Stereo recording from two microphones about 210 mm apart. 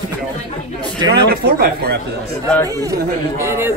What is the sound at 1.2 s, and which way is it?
Speech, 50° right (ahead or behind).